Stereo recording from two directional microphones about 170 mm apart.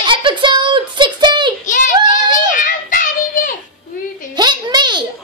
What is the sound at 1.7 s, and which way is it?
Child singing, 50° left (ahead or behind).